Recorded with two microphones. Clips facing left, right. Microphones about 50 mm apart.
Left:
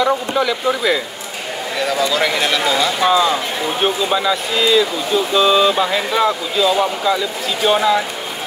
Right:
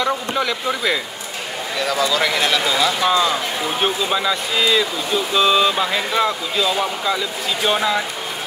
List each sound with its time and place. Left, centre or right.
0.0 s speech: centre